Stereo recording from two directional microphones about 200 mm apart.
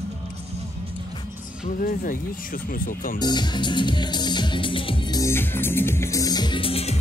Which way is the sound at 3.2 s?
20° left (ahead or behind).